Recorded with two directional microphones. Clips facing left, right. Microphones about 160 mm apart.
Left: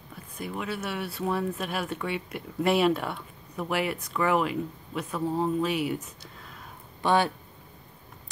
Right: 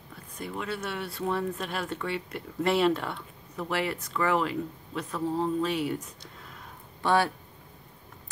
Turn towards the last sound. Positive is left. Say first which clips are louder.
# left 1 dB
turn(degrees=20)  # may be behind; listen again after turning